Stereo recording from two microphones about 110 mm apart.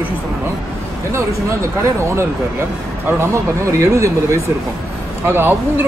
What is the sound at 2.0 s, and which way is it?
Speech, 25° right (ahead or behind).